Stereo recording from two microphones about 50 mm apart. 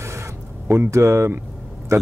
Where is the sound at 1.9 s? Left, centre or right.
Right.